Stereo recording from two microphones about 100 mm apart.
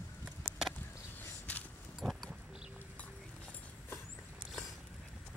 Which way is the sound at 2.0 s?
5° right (ahead or behind).